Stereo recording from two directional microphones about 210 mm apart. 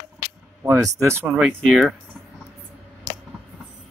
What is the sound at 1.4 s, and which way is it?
Speech, centre (ahead or behind).